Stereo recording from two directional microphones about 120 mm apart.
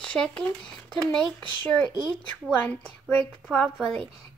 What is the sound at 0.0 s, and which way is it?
A woman's voice, 10° left (ahead or behind).